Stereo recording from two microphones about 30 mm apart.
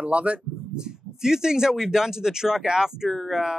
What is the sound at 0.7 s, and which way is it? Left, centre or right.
Speech, right.